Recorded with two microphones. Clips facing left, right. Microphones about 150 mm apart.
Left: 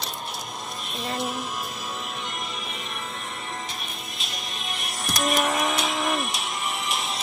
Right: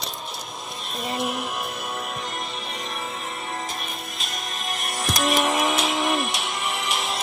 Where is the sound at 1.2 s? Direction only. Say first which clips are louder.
Right 3 dB; 65° right (ahead or behind).